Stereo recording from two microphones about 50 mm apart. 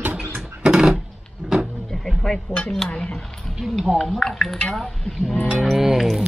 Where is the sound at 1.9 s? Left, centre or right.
Centre.